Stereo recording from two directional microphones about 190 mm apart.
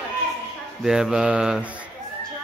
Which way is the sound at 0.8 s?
5° right (ahead or behind).